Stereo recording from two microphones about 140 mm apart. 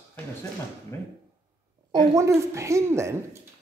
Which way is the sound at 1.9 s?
20° right (ahead or behind).